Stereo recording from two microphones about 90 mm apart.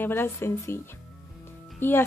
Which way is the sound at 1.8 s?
25° left (ahead or behind).